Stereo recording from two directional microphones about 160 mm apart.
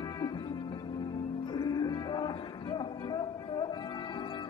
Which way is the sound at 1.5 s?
25° left (ahead or behind).